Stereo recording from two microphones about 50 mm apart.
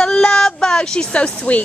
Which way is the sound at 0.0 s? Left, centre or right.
Centre.